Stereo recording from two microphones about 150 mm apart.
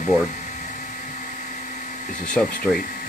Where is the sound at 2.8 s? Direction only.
75° left (ahead or behind).